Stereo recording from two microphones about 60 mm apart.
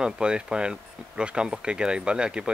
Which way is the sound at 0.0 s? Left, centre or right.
Centre.